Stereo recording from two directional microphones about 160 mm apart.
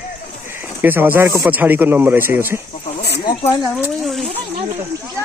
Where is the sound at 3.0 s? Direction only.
90° left.